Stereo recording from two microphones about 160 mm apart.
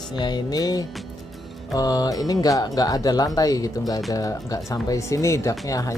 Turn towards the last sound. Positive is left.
turn(degrees=20)  # may be behind; listen again after turning